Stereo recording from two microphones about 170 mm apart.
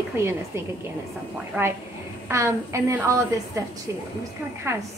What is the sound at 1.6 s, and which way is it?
A woman's voice, 10° right (ahead or behind).